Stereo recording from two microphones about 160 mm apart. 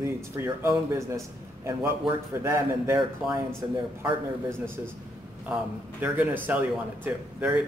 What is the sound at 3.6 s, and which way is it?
Speech, 25° right (ahead or behind).